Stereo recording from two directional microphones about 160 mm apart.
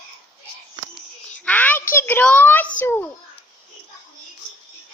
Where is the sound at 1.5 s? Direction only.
10° left (ahead or behind).